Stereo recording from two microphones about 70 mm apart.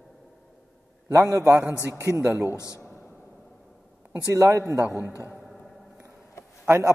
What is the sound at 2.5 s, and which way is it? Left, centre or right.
Speech, left.